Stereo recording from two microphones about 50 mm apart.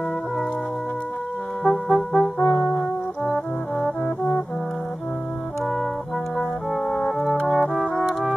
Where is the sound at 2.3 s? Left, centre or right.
Left.